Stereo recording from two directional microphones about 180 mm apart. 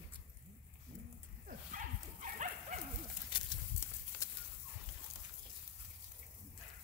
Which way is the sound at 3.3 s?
25° left (ahead or behind).